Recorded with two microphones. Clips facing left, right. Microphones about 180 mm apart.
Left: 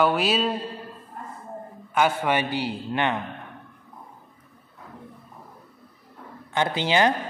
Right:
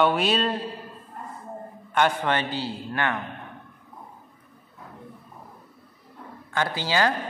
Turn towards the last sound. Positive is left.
turn(degrees=20)  # may be behind; listen again after turning